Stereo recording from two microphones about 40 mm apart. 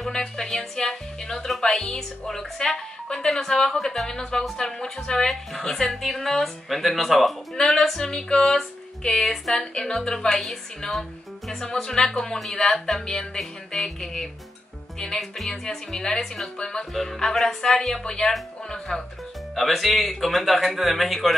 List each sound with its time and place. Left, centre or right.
0.1 s speech: centre
3.7 s speech: centre
4.2 s speech: centre
5.3 s speech: centre; by 16.8 s left
16.9 s speech: centre